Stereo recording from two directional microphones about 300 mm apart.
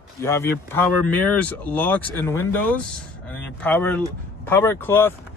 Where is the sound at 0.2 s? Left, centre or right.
Centre.